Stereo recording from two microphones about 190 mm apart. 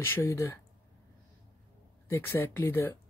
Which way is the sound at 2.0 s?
15° left (ahead or behind).